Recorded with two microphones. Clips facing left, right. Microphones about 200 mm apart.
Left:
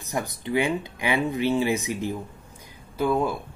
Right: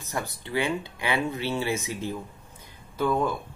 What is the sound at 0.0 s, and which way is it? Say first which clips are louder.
Speech: left 3 dB; 15° left (ahead or behind).